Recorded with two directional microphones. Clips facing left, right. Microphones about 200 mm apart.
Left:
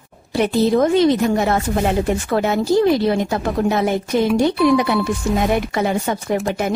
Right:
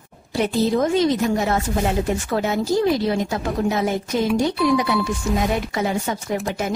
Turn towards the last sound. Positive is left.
turn(degrees=55)  # may be behind; listen again after turning